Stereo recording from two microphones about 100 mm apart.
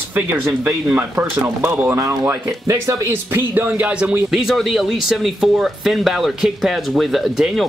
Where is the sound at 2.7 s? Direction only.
30° right (ahead or behind).